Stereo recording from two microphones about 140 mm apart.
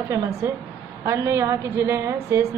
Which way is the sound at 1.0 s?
20° right (ahead or behind).